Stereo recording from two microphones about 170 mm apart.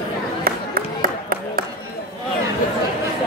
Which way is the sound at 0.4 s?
60° right (ahead or behind).